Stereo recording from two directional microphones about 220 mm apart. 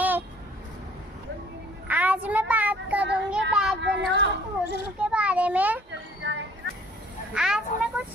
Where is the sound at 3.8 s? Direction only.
50° right (ahead or behind).